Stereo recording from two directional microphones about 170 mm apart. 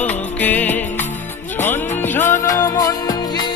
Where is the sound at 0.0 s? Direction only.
10° left (ahead or behind).